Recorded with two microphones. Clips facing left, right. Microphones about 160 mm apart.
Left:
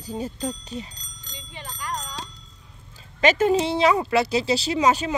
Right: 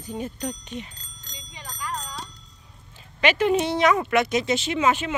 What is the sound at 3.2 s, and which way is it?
Speech, 40° left (ahead or behind).